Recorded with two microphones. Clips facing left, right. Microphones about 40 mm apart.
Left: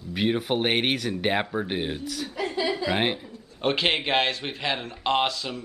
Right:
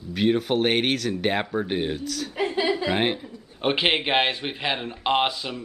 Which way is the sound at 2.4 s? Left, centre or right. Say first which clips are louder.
Right 3 dB; right.